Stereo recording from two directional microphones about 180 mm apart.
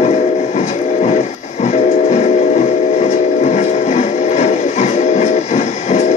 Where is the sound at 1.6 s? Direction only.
40° left (ahead or behind).